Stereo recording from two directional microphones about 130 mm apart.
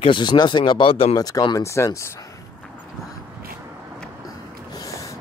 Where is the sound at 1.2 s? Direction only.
30° left (ahead or behind).